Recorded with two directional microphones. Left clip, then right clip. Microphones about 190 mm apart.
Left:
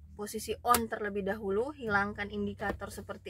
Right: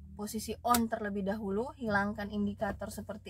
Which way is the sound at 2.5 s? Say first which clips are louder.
Right 2 dB; 10° left (ahead or behind).